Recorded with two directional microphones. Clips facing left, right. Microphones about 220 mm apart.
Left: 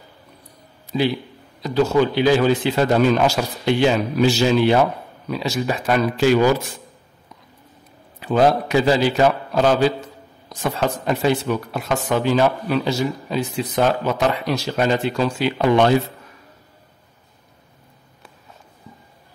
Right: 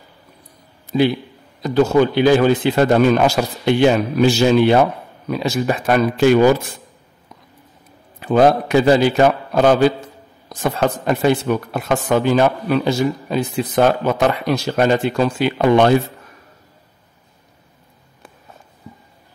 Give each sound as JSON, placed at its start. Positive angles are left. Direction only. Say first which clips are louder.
{"t": 0.9, "sound": "speech", "louder": "right 4 dB", "side_deg": -50}
{"t": 8.2, "sound": "speech", "louder": "right 3 dB", "side_deg": -50}